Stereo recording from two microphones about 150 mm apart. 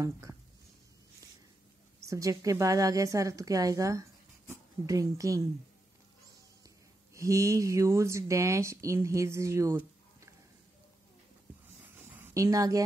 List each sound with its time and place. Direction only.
0.0 s speech: 20° right (ahead or behind)
2.0 s a woman's voice: 20° right (ahead or behind)
7.2 s speech: 20° right (ahead or behind)
11.8 s a sound: 10° right (ahead or behind)